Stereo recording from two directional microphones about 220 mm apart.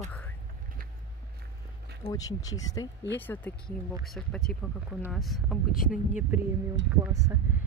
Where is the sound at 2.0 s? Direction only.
15° left (ahead or behind); by 7.3 s 15° right (ahead or behind).